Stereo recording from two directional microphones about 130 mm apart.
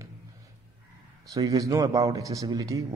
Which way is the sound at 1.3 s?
25° right (ahead or behind).